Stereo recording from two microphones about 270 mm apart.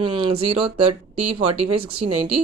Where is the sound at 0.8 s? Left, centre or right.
Right.